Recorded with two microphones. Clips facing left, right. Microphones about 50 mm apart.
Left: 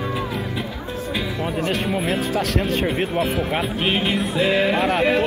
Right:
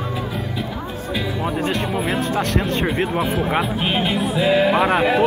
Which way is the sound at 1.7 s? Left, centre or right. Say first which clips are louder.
Even; centre.